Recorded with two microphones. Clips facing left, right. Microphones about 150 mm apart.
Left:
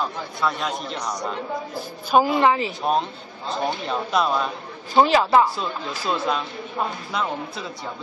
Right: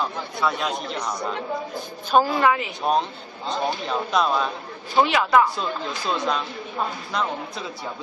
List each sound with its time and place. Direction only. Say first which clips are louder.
0.0 s a man's voice: even; centre (ahead or behind)
2.3 s speech: left 2 dB; 25° left (ahead or behind)
2.8 s a man's voice: even; centre (ahead or behind)
5.0 s speech: left 2 dB; 30° left (ahead or behind)
5.6 s a man's voice: right 1 dB; 5° left (ahead or behind)